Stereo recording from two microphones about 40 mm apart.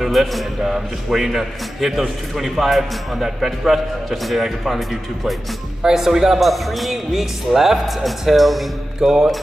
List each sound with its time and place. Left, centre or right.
0.0 s a man's voice: centre
5.8 s a man's voice: centre
9.0 s mantra: centre